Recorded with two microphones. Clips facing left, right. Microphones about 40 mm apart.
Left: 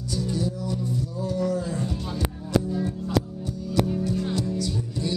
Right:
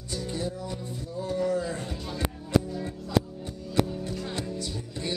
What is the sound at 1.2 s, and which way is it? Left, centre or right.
Speech, right.